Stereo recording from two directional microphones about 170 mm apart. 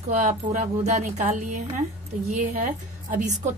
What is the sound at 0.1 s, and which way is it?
Speech, 45° right (ahead or behind).